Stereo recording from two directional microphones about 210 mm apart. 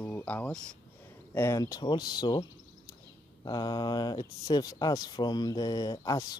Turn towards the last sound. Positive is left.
turn(degrees=20)  # may be behind; listen again after turning